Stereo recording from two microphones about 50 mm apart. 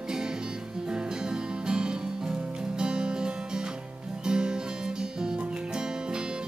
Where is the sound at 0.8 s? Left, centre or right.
Centre.